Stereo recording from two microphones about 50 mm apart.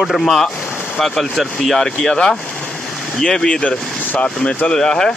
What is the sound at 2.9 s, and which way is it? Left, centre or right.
Speech, centre.